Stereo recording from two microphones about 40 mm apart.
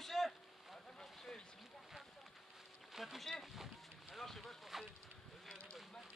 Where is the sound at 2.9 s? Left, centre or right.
Centre.